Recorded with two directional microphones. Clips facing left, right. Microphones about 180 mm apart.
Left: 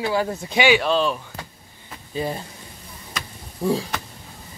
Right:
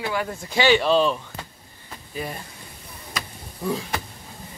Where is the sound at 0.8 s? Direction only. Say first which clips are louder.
Right 2 dB; centre (ahead or behind).